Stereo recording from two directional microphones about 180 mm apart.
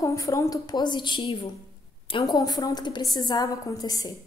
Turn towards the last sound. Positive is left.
turn(degrees=20)  # may be behind; listen again after turning